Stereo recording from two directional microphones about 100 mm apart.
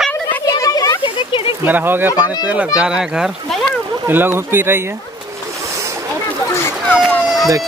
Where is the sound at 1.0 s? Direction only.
60° left (ahead or behind).